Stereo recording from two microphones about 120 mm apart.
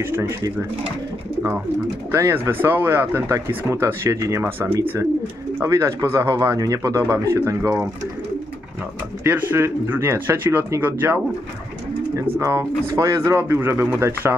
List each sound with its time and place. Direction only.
0.0 s speech: 20° right (ahead or behind)
2.0 s speech: 20° right (ahead or behind)
9.2 s speech: 20° right (ahead or behind)
12.4 s speech: 25° right (ahead or behind)